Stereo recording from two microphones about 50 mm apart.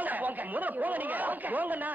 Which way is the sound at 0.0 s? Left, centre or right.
Right.